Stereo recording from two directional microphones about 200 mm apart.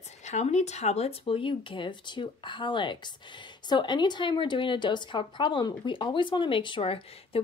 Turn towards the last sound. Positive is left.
turn(degrees=25)  # may be behind; listen again after turning